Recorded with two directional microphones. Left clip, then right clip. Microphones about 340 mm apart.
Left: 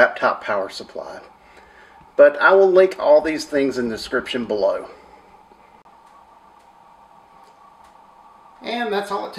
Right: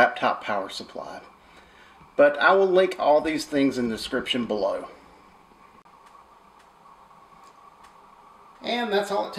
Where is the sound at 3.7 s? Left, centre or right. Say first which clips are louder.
Left 5 dB; centre.